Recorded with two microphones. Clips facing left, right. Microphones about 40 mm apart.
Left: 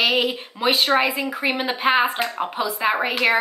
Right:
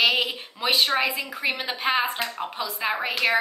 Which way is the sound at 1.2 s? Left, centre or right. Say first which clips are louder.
Left 6 dB; left.